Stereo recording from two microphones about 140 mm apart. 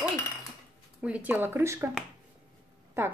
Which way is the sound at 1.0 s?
10° right (ahead or behind).